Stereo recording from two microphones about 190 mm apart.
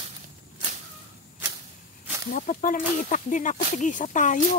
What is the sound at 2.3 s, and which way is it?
Speech, 45° left (ahead or behind).